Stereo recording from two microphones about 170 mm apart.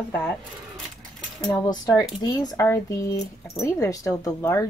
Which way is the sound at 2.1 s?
25° left (ahead or behind).